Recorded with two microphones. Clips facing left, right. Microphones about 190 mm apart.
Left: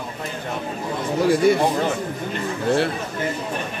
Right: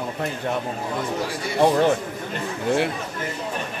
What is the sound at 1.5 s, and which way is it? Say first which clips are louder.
Speech: left 9 dB; 55° left (ahead or behind).